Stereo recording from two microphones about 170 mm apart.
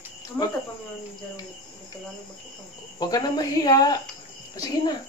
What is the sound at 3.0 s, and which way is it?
Speech, 20° left (ahead or behind).